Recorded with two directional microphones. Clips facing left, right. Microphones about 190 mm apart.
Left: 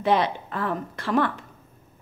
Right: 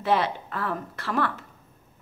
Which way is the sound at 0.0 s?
20° left (ahead or behind).